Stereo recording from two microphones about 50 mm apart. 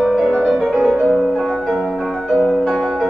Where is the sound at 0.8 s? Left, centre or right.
Right.